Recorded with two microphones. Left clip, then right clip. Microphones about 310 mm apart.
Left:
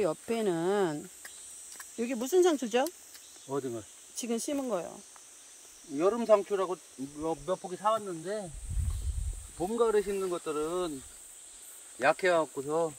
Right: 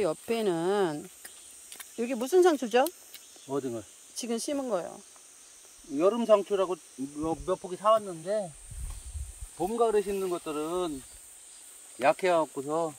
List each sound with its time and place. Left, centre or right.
0.0 s speech: centre
3.4 s speech: right
4.1 s speech: centre
5.9 s speech: right
9.6 s speech: right
12.0 s speech: right